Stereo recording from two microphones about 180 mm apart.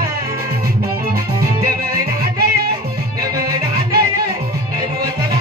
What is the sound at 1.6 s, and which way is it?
Music, 55° right (ahead or behind).